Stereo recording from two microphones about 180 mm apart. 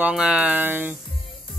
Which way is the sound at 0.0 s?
5° right (ahead or behind).